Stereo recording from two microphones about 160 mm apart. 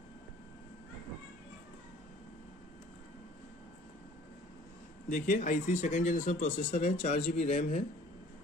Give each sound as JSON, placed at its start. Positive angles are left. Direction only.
{"t": 5.1, "sound": "speech", "side_deg": 55}